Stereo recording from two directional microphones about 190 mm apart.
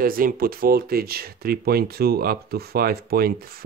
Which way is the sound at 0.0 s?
50° right (ahead or behind).